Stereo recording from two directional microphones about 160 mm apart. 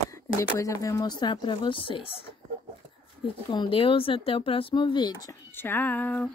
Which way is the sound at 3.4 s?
30° left (ahead or behind).